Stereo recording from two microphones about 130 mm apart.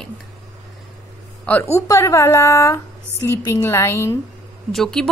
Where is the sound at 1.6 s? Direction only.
20° left (ahead or behind).